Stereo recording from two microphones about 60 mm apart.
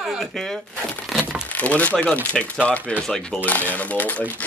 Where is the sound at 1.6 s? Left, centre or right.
Left.